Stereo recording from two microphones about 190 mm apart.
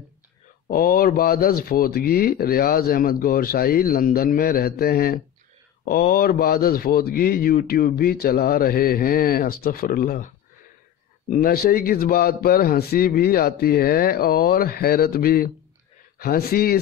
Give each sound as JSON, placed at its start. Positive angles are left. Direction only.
{"t": 0.7, "sound": "speech", "side_deg": 50}